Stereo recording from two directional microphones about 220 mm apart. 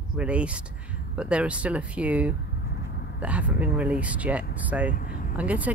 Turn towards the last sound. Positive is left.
turn(degrees=-5)  # may be behind; listen again after turning